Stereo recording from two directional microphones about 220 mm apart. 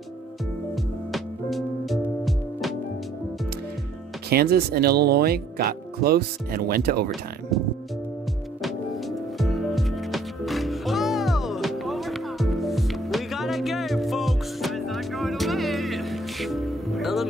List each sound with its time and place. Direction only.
1.1 s music: centre (ahead or behind)
4.3 s speech: 45° right (ahead or behind)
7.5 s music: centre (ahead or behind)
9.4 s music: centre (ahead or behind)